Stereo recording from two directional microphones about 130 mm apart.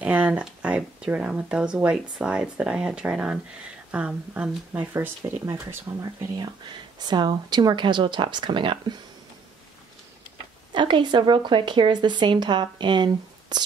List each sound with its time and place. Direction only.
0.0 s speech: 10° right (ahead or behind)
7.0 s speech: 35° right (ahead or behind)
10.7 s speech: 35° right (ahead or behind)